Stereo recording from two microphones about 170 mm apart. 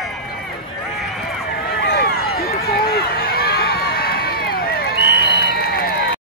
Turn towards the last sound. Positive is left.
turn(degrees=65)  # may be behind; listen again after turning